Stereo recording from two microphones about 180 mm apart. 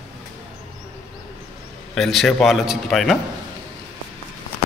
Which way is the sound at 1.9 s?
Centre (ahead or behind).